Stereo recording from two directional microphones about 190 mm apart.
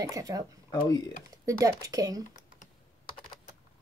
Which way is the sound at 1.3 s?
20° right (ahead or behind).